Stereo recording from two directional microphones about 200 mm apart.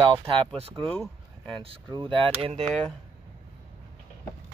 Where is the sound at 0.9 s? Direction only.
10° left (ahead or behind).